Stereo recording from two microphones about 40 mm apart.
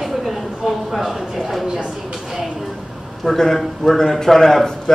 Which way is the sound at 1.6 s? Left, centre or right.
Right.